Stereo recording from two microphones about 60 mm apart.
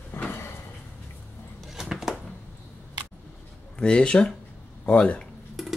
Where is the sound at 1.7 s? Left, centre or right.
Centre.